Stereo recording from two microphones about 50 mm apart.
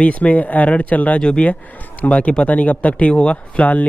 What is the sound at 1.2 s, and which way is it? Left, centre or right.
Speech, centre.